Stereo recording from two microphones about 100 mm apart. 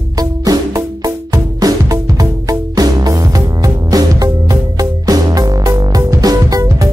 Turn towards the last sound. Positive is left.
turn(degrees=-35)  # may be behind; listen again after turning